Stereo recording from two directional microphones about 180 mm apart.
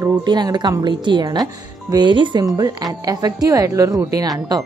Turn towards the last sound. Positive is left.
turn(degrees=-20)  # may be behind; listen again after turning